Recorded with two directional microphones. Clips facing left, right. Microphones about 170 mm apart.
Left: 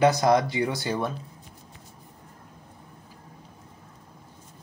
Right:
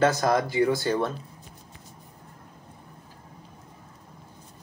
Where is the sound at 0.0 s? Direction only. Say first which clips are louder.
Left 2 dB; 20° left (ahead or behind).